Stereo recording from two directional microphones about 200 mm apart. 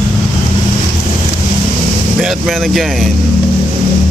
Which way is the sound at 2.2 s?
Centre (ahead or behind).